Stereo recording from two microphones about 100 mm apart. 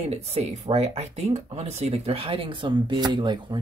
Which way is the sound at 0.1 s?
90° right.